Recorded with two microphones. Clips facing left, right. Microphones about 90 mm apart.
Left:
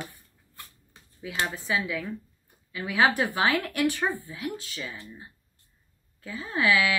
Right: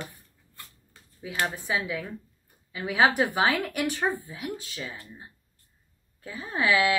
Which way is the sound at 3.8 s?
20° right (ahead or behind).